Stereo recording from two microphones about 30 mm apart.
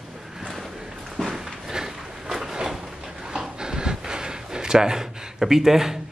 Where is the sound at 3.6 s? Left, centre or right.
Right.